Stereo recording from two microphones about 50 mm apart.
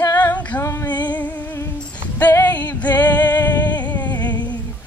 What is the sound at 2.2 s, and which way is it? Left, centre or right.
Singing, left.